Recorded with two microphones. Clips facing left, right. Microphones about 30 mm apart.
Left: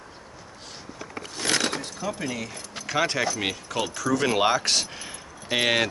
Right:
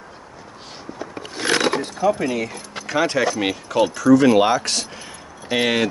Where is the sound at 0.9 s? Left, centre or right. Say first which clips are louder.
Right 5 dB; right.